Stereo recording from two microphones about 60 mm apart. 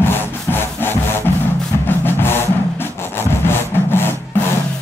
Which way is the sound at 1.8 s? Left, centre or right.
Left.